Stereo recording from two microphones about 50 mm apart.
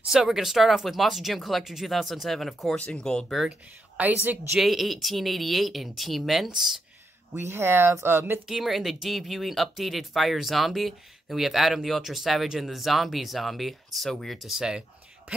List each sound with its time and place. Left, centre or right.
0.1 s speech: centre
3.0 s speech: centre
4.0 s a woman's voice: right
4.6 s speech: centre
7.3 s speech: right
8.5 s speech: centre
14.6 s a sound: centre